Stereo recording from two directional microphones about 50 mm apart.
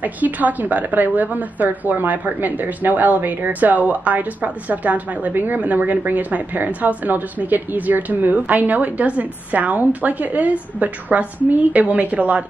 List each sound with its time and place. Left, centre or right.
0.0 s a woman's voice: right